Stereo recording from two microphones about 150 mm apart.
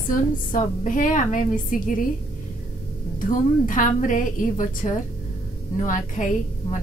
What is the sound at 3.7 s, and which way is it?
A woman's voice, 60° left (ahead or behind).